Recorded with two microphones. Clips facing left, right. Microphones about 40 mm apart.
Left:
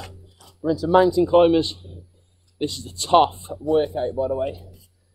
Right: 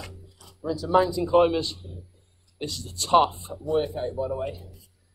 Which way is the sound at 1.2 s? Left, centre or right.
Left.